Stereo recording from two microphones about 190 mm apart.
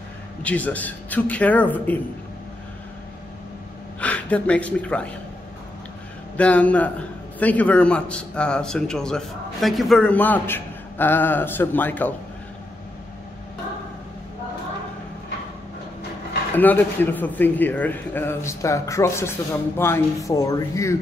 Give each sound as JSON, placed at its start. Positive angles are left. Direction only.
{"t": 0.4, "sound": "a man's voice", "side_deg": 10}
{"t": 4.0, "sound": "a woman's voice", "side_deg": 5}
{"t": 6.3, "sound": "a man's voice", "side_deg": 5}
{"t": 16.5, "sound": "a man's voice", "side_deg": 10}